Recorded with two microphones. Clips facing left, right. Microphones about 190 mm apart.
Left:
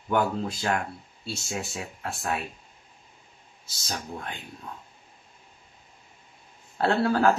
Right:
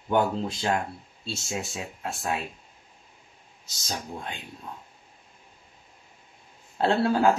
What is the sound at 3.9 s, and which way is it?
Speech, 15° right (ahead or behind).